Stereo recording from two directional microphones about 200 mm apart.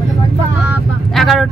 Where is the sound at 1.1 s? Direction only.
Centre (ahead or behind).